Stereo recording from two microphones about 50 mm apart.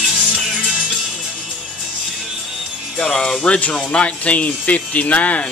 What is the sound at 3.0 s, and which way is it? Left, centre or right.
Speech, centre.